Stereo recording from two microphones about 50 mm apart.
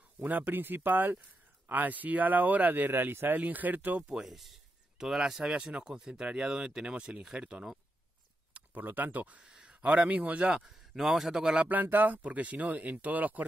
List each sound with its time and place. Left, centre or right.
0.2 s speech: right
3.3 s speech: right
4.1 s speech: centre; by 7.6 s right
8.5 s speech: right
9.4 s a sound: centre
9.8 s a man's voice: right
10.5 s speech: centre
11.4 s a man's voice: right
11.7 s speech: right
12.2 s speech: right